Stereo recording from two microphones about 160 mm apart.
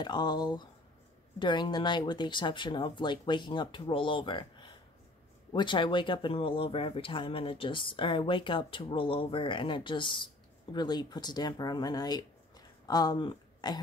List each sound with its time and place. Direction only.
0.0 s speech: 25° left (ahead or behind)